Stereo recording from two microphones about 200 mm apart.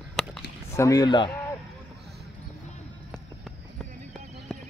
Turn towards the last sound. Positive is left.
turn(degrees=5)  # may be behind; listen again after turning